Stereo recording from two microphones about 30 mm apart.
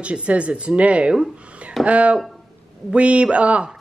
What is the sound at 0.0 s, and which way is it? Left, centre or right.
Speech, right.